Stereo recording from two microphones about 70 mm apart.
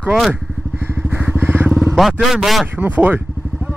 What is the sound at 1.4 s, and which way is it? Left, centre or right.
Vehicle, right.